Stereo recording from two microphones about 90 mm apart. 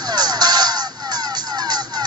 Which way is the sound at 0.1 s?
50° right (ahead or behind).